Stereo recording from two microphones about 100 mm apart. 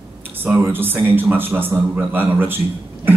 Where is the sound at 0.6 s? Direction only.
20° right (ahead or behind).